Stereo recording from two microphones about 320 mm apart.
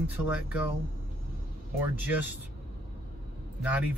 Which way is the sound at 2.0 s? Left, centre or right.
Centre.